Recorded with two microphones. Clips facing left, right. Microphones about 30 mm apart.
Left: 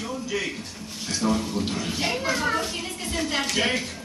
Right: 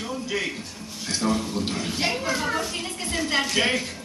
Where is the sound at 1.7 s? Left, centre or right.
Right.